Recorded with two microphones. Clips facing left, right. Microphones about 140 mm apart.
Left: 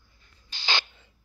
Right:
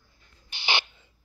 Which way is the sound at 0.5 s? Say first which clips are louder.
Right 1 dB; 20° right (ahead or behind).